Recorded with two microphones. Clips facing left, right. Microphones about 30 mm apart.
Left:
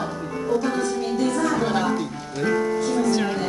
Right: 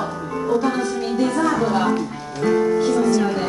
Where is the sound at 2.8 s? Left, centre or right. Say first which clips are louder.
Right 4 dB; right.